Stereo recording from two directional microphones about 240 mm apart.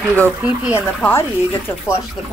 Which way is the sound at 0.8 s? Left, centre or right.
Centre.